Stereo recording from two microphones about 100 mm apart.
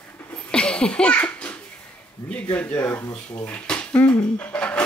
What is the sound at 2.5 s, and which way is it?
Speech, 20° left (ahead or behind).